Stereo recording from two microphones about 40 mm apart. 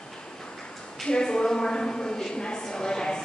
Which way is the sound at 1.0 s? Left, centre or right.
Centre.